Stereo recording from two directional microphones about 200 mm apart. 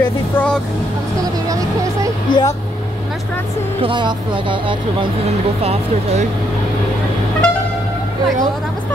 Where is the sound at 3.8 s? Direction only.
25° right (ahead or behind).